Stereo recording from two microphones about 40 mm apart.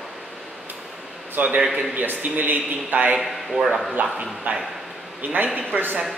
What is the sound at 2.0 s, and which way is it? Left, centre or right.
Speech, right.